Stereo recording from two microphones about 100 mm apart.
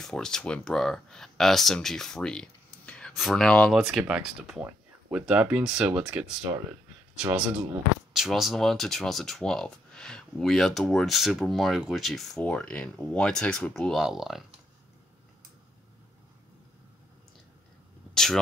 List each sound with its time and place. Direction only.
0.0 s speech: 5° left (ahead or behind)
3.1 s speech: centre (ahead or behind)
3.7 s speech: 5° right (ahead or behind)
8.1 s speech: centre (ahead or behind)
18.1 s speech: 5° left (ahead or behind)